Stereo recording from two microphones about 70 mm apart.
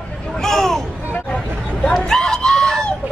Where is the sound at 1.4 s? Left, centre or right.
Centre.